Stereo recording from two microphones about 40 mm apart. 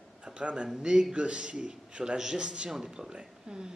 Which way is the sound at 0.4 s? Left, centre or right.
Right.